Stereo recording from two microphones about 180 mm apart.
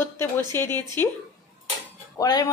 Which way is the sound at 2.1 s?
20° left (ahead or behind).